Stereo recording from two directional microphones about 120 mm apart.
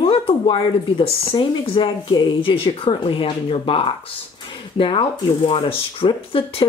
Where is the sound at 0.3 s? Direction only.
50° left (ahead or behind).